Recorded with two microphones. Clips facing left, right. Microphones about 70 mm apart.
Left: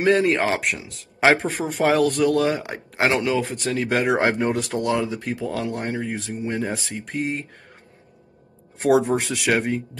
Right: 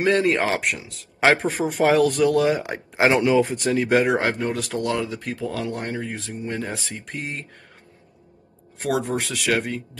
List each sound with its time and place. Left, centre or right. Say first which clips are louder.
0.0 s speech: left 1 dB; centre
4.2 s speech: left 3 dB; left
4.7 s speech: left 2 dB; centre
8.7 s speech: left 6 dB; left
9.0 s speech: left 3 dB; centre